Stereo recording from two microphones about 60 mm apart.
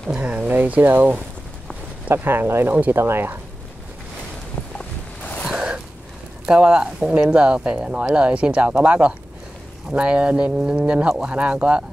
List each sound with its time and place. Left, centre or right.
0.1 s speech: centre; by 2.7 s right
2.7 s speech: right
3.0 s speech: right
4.7 s a sound: left
5.5 s a sound: centre
6.4 s speech: centre